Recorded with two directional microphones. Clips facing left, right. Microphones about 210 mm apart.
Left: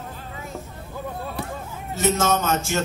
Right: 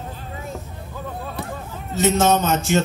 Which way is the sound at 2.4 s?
20° right (ahead or behind).